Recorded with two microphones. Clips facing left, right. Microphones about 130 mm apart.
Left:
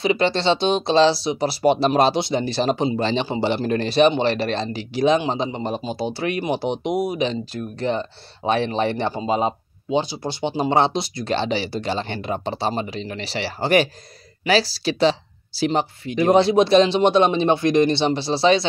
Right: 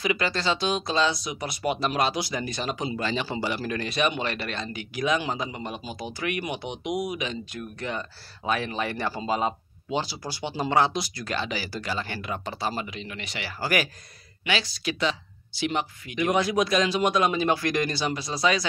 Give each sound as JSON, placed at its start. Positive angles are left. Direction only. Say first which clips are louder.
{"t": 0.0, "sound": "speech", "louder": "left 7 dB", "side_deg": 25}